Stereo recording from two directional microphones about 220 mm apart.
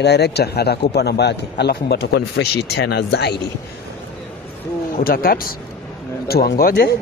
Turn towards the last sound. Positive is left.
turn(degrees=45)  # may be behind; listen again after turning